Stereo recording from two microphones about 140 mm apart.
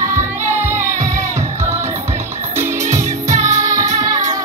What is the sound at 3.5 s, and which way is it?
Music, 25° right (ahead or behind).